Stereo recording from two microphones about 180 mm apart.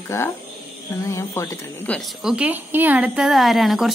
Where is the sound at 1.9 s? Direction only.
5° right (ahead or behind).